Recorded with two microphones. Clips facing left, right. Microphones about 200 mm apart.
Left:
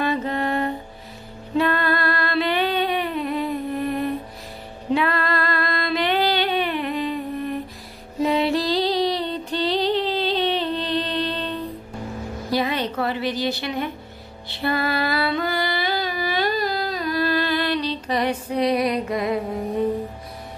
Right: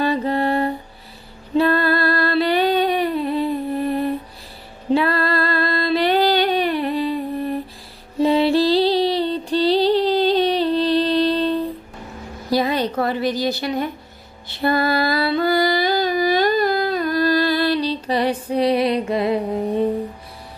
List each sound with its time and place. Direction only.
0.0 s music: 35° right (ahead or behind)
4.9 s female singing: 35° right (ahead or behind)
8.2 s music: 30° right (ahead or behind)
12.4 s a sound: 35° right (ahead or behind)
14.6 s music: 40° right (ahead or behind)